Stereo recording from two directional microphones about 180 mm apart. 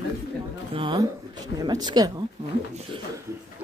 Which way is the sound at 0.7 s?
25° right (ahead or behind).